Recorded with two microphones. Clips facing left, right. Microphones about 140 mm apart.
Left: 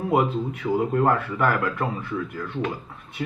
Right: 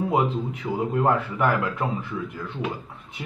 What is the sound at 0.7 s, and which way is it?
Speech, 5° right (ahead or behind).